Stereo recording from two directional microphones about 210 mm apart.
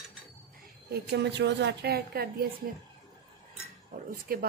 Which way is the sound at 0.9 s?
50° right (ahead or behind).